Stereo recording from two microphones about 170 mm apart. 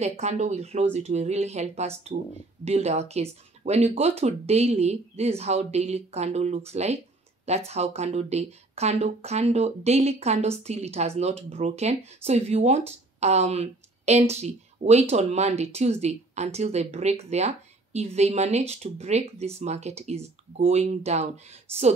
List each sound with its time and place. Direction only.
0.0 s speech: 40° right (ahead or behind)